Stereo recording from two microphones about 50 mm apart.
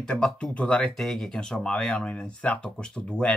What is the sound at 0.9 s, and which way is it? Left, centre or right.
Speech, centre.